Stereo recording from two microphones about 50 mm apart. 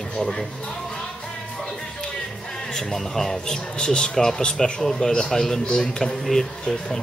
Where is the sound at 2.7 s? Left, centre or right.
Centre.